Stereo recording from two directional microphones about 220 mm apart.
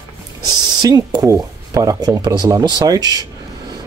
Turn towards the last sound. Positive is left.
turn(degrees=-15)  # may be behind; listen again after turning